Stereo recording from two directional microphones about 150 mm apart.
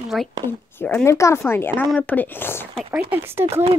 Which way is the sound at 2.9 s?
10° right (ahead or behind).